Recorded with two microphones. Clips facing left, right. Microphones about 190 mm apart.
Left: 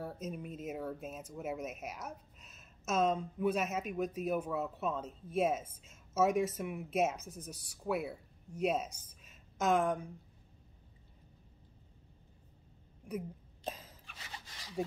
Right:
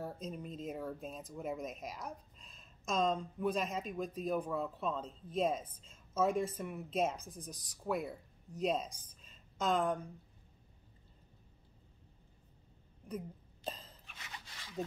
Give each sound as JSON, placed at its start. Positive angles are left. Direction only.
{"t": 0.0, "sound": "a woman's voice", "side_deg": 5}
{"t": 13.7, "sound": "a sound", "side_deg": 5}
{"t": 14.1, "sound": "rub", "side_deg": 30}